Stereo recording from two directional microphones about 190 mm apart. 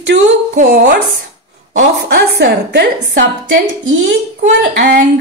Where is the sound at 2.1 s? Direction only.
60° right (ahead or behind).